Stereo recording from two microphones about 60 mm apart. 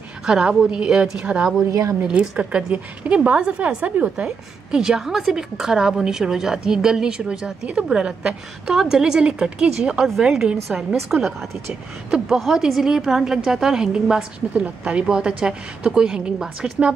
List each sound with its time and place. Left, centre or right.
0.3 s a woman's voice: centre
1.7 s a woman's voice: right
2.0 s a woman's voice: centre
11.0 s a woman's voice: centre